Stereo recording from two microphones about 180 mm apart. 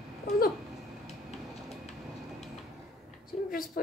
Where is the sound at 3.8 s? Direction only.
50° left (ahead or behind).